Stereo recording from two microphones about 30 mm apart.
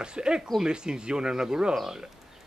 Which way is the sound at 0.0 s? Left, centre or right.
Right.